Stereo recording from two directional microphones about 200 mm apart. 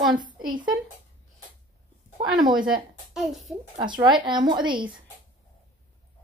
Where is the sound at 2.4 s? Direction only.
20° right (ahead or behind).